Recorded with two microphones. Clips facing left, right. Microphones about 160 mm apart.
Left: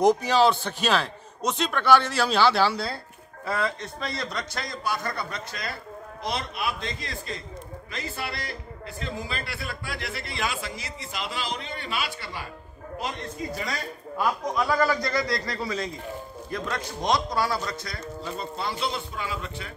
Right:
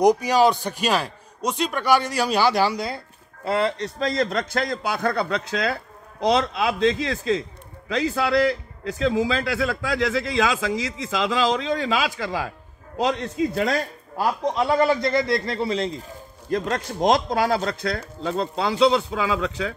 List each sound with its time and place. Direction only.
0.0 s a man's voice: 15° right (ahead or behind)
3.4 s a man's voice: 30° right (ahead or behind)
3.8 s a man's voice: 90° right
4.2 s a man's voice: 50° right (ahead or behind); by 5.7 s 80° right
6.3 s a man's voice: 90° right; by 13.7 s 70° right (ahead or behind)
14.1 s a man's voice: 30° right (ahead or behind)
16.5 s a man's voice: 45° right (ahead or behind)
17.1 s a man's voice: 55° right (ahead or behind); by 19.7 s 90° right